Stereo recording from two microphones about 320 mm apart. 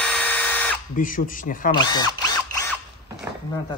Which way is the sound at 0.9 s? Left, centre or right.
Left.